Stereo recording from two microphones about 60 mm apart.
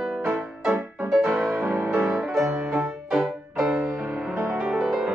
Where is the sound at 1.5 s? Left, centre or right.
Right.